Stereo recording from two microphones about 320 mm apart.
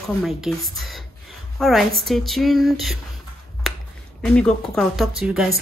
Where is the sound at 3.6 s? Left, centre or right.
Centre.